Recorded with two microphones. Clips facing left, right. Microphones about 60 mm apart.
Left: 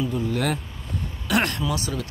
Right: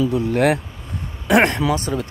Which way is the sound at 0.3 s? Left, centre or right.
Right.